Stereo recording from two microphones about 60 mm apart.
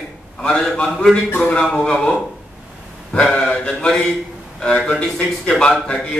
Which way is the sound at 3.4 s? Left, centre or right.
Centre.